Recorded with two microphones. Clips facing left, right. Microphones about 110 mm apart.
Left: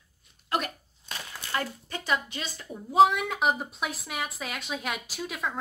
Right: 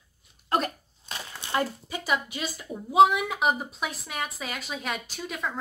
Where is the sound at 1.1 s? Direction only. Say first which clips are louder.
Right 4 dB; 25° right (ahead or behind).